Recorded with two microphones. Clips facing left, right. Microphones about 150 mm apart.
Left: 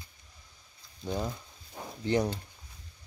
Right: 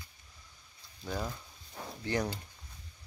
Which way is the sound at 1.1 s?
20° left (ahead or behind).